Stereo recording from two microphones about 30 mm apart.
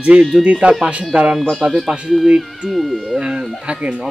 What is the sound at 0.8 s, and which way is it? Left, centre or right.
Speech, right.